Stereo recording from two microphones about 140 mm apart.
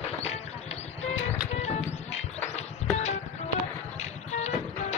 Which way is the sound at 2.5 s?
50° left (ahead or behind).